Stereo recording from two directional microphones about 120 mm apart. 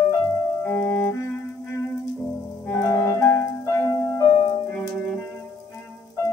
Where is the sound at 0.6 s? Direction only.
20° left (ahead or behind).